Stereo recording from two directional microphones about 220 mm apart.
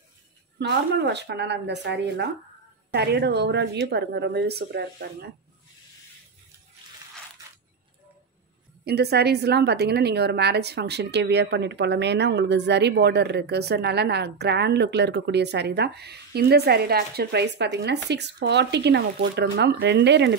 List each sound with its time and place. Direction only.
0.6 s a woman's voice: 50° right (ahead or behind)
8.8 s a woman's voice: 45° right (ahead or behind)